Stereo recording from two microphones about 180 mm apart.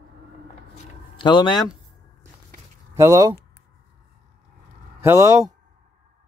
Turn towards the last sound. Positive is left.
turn(degrees=-15)  # may be behind; listen again after turning